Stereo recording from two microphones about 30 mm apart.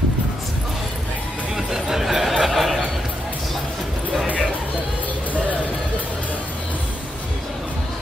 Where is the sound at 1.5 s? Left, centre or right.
Centre.